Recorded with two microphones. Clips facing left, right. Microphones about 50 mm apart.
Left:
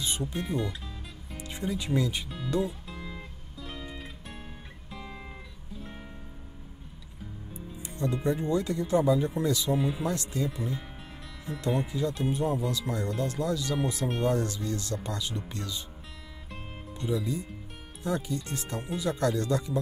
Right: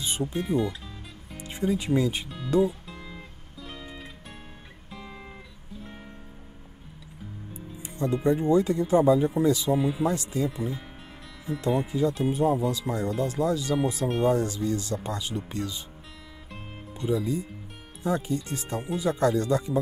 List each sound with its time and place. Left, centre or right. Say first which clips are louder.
0.0 s music: right 3 dB; right
0.3 s music: right 5 dB; centre
1.4 s music: right 6 dB; right
2.0 s speech: right 3 dB; right
2.2 s music: right 6 dB; centre
7.8 s speech: right 4 dB; right
9.7 s speech: right 4 dB; centre
10.0 s speech: right 4 dB; centre
10.5 s speech: right 2 dB; centre
11.8 s speech: right 4 dB; centre
16.9 s speech: right 4 dB; centre